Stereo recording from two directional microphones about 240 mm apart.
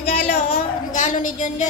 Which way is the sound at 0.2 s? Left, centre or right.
Left.